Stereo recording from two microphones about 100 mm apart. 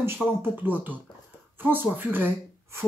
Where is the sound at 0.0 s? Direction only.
25° right (ahead or behind).